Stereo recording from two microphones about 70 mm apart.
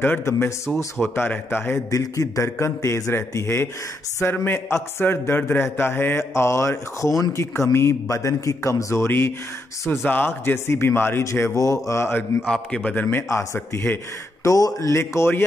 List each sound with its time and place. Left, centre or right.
0.2 s a man's voice: left
1.1 s speech: left
1.9 s a man's voice: left
9.8 s speech: left
12.1 s speech: left
12.4 s a man's voice: centre
12.8 s speech: left
14.4 s a man's voice: left